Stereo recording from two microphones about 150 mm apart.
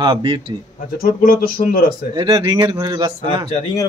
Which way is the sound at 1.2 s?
80° left.